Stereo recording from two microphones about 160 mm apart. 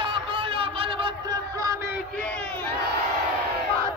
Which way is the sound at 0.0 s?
30° right (ahead or behind).